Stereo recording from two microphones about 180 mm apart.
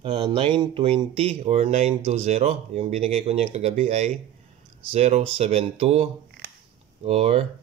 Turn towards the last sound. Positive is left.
turn(degrees=-35)  # may be behind; listen again after turning